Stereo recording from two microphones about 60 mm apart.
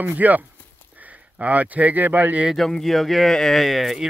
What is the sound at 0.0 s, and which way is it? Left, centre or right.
Speech, right.